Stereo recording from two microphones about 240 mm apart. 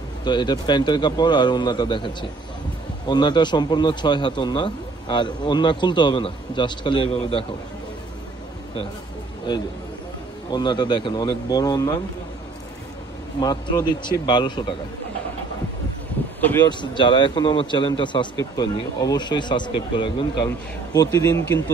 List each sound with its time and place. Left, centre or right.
0.2 s a man's voice: centre
9.5 s speech: centre
13.4 s a man's voice: centre
16.6 s a man's voice: centre